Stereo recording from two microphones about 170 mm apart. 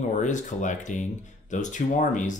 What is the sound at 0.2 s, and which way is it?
Speech, 45° left (ahead or behind).